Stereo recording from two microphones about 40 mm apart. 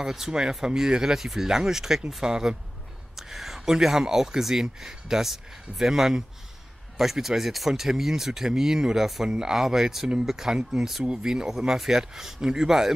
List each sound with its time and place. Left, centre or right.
0.0 s speech: centre